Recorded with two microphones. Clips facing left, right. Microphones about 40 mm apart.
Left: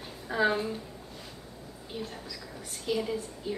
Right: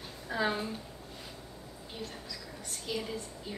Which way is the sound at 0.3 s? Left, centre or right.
Centre.